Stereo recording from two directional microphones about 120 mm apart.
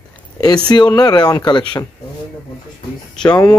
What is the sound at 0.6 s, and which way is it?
Speech, 35° left (ahead or behind).